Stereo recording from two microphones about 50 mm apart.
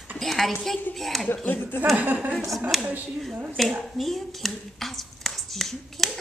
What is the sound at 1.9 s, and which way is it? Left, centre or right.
Speech, right.